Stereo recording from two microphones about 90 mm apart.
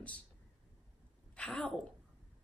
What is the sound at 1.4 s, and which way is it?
Speech, 15° left (ahead or behind).